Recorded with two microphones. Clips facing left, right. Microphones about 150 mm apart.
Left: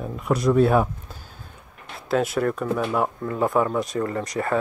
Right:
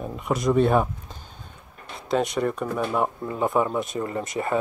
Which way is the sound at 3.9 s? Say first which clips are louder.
Left 2 dB; 15° right (ahead or behind).